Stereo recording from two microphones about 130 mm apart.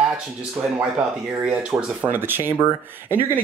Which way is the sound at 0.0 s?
5° right (ahead or behind).